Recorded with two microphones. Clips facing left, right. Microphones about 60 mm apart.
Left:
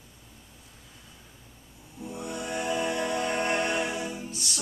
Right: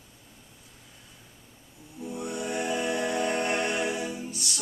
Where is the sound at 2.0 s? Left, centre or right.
Centre.